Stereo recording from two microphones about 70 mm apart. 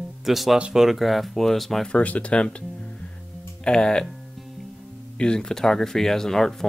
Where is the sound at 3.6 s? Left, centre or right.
Centre.